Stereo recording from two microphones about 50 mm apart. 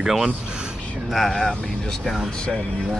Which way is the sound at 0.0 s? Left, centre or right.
Centre.